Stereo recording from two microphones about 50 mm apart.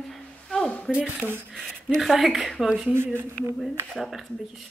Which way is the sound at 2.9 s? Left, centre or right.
Right.